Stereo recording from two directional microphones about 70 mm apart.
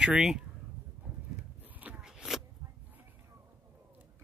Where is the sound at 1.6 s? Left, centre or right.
Right.